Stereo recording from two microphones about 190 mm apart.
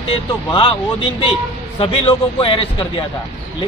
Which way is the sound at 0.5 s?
25° left (ahead or behind).